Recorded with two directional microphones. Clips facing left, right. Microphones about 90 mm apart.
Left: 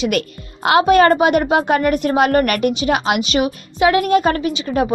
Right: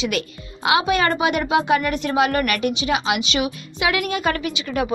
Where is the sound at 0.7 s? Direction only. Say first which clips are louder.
Left 7 dB; 45° left (ahead or behind).